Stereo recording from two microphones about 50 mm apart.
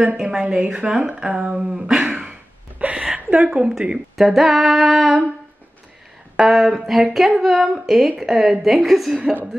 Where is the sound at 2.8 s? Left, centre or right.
Right.